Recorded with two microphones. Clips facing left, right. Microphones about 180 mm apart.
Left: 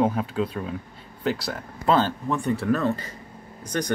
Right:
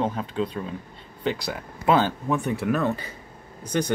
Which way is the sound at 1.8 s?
10° right (ahead or behind).